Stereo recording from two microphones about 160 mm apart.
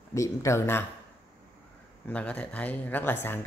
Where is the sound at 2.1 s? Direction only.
10° left (ahead or behind).